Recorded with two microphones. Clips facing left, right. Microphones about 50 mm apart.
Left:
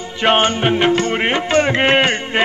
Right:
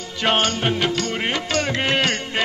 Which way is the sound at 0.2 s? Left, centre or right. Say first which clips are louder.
Left 5 dB; left.